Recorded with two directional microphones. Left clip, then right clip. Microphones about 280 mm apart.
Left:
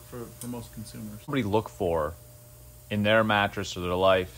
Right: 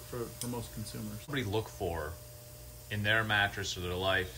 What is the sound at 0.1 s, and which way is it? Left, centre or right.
Speech, centre.